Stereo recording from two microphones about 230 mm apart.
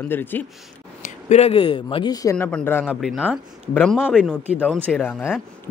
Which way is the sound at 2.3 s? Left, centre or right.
Centre.